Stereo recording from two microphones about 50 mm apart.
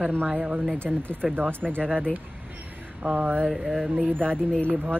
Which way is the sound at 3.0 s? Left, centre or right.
Right.